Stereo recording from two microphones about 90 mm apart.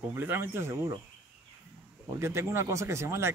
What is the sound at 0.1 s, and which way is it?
Speech, 25° right (ahead or behind).